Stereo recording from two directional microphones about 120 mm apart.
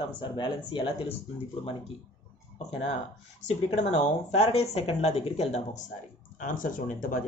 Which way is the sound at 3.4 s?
65° left (ahead or behind).